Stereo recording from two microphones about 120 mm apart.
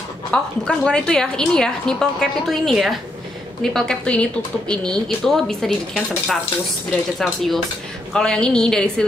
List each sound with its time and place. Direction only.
0.3 s a woman's voice: 10° left (ahead or behind)